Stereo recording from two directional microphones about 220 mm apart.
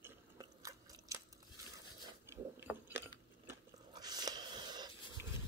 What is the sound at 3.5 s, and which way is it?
Biting, 15° right (ahead or behind).